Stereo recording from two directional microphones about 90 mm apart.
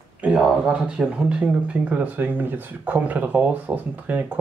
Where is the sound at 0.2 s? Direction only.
10° right (ahead or behind).